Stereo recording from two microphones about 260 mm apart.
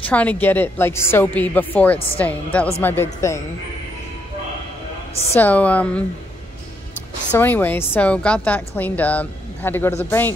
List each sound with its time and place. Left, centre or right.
0.0 s a woman's voice: centre
5.3 s a woman's voice: centre
7.3 s speech: centre